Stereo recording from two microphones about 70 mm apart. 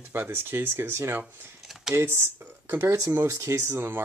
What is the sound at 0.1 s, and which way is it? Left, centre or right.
Speech, right.